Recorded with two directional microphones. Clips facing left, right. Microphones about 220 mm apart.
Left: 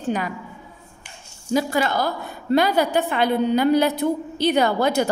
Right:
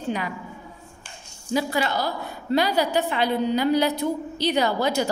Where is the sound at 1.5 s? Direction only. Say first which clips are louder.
Left 3 dB; 50° left (ahead or behind).